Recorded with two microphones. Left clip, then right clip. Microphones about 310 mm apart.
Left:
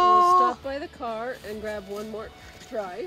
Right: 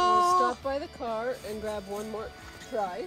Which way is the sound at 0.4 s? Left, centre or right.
Centre.